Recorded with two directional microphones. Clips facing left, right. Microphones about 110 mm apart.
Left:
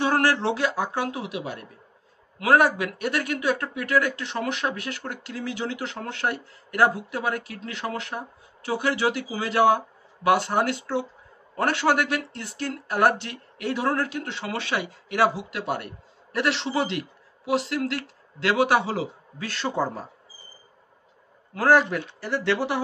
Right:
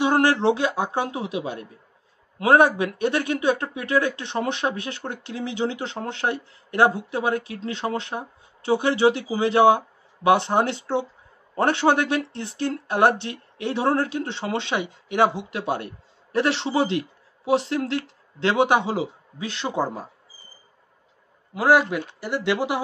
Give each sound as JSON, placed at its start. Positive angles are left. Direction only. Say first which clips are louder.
{"t": 0.0, "sound": "a man's voice", "louder": "right 3 dB", "side_deg": -20}
{"t": 21.5, "sound": "speech", "louder": "right 1 dB", "side_deg": -10}